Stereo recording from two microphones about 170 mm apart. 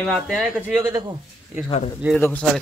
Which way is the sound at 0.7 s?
15° right (ahead or behind).